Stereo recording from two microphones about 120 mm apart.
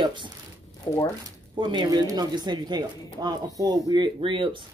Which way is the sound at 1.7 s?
35° right (ahead or behind).